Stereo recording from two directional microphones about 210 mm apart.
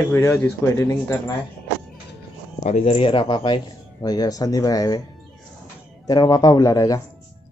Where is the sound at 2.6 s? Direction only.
30° left (ahead or behind).